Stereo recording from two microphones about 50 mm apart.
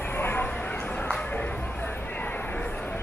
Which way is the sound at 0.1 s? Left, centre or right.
Left.